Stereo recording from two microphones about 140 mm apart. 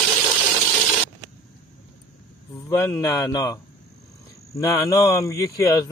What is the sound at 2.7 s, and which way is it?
Speech, 20° left (ahead or behind).